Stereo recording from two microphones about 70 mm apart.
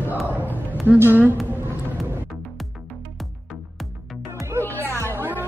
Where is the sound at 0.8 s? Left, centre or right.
Right.